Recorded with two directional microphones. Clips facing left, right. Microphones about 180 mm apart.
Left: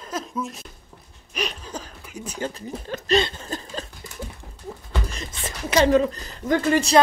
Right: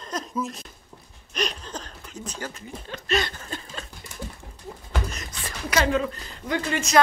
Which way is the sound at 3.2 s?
25° left (ahead or behind).